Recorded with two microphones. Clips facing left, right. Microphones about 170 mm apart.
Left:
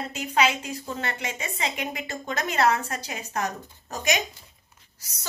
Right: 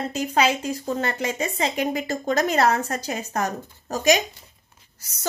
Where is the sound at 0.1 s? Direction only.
40° right (ahead or behind).